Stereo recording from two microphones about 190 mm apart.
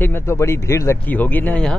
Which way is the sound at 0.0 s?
15° left (ahead or behind).